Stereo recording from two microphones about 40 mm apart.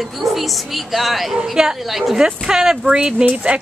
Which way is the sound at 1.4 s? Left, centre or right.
Centre.